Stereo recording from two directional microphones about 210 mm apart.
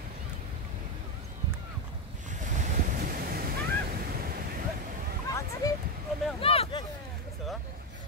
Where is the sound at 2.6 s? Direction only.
45° right (ahead or behind).